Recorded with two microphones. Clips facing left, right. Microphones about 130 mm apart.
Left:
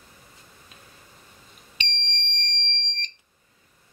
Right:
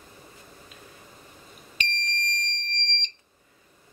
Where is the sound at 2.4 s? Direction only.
Centre (ahead or behind).